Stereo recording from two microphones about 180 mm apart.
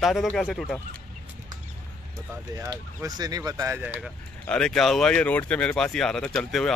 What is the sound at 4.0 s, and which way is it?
Speech, 5° left (ahead or behind).